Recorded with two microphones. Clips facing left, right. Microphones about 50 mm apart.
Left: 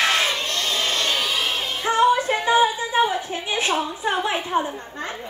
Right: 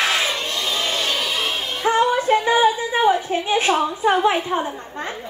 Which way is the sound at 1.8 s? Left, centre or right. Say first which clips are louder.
Right 1 dB; right.